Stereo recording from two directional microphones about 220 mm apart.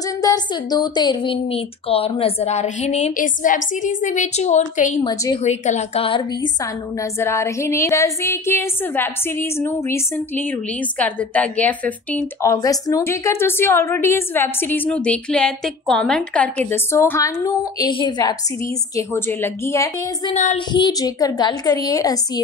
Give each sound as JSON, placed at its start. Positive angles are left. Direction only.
{"t": 0.0, "sound": "a woman's voice", "side_deg": 15}
{"t": 5.0, "sound": "a woman's voice", "side_deg": 20}
{"t": 5.5, "sound": "a woman's voice", "side_deg": 30}
{"t": 20.3, "sound": "a sound", "side_deg": 35}
{"t": 20.7, "sound": "a woman's voice", "side_deg": 20}